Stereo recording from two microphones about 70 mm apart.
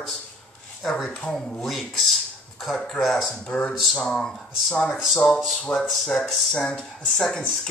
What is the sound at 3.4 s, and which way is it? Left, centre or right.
Speech, centre.